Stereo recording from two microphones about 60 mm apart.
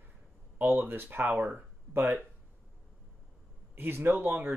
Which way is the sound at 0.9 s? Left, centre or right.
Right.